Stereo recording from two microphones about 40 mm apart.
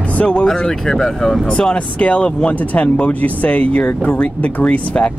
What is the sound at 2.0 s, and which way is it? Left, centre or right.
Speech, left.